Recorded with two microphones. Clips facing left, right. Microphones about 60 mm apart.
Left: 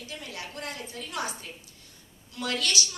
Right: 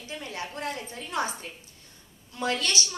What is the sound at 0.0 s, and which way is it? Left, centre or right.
A woman's voice, right.